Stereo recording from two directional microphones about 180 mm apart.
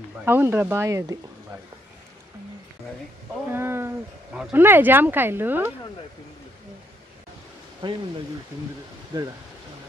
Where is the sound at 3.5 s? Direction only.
15° right (ahead or behind).